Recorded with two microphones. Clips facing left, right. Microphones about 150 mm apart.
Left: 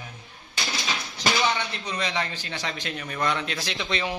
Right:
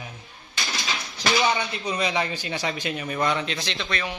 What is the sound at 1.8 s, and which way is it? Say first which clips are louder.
A man's voice: right 4 dB; 10° right (ahead or behind).